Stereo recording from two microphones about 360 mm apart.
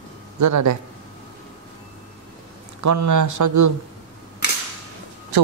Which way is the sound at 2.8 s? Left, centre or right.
Right.